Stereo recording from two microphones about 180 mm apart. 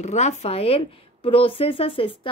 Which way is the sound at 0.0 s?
40° left (ahead or behind).